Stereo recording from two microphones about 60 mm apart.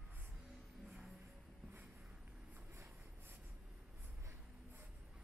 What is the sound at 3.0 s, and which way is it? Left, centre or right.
Writing, right.